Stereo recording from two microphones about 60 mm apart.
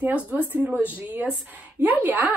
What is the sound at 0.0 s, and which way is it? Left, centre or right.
A woman's voice, right.